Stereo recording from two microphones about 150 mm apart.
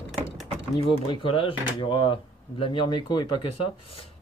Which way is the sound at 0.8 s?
35° left (ahead or behind).